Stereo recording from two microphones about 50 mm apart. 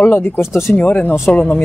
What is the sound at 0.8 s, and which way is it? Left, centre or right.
Speech, left.